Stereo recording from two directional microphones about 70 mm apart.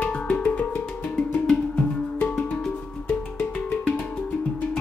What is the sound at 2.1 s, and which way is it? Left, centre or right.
Music, left.